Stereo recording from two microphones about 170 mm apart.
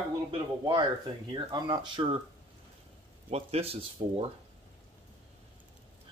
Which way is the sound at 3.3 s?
35° right (ahead or behind).